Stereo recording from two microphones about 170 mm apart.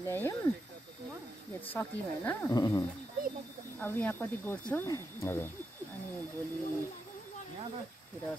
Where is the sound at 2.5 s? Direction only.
20° left (ahead or behind).